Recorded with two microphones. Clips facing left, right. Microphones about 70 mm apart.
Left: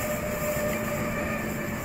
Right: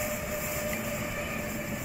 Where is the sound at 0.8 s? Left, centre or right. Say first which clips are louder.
Left 5 dB; left.